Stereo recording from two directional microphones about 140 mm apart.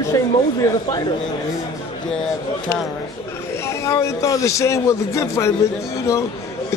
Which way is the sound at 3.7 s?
20° left (ahead or behind).